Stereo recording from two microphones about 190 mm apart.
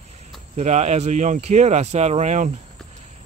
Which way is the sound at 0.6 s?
35° right (ahead or behind).